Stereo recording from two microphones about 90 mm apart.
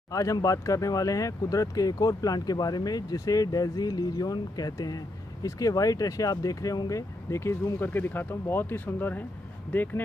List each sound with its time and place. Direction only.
0.1 s speech: 40° left (ahead or behind); by 10.0 s 20° left (ahead or behind)